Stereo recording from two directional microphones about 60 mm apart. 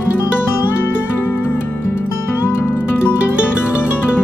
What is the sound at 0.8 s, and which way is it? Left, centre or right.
Music, left.